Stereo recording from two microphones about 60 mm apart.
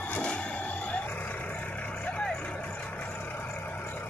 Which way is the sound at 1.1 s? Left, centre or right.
Left.